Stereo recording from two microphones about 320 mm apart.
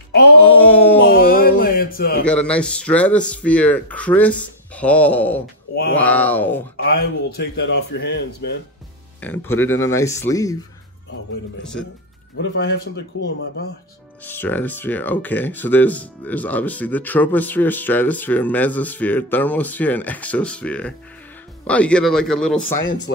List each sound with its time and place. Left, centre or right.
0.4 s a sound: centre
1.1 s music: left
2.2 s speech: centre
6.8 s a man's voice: left
9.2 s speech: centre
12.4 s a man's voice: left
14.2 s speech: centre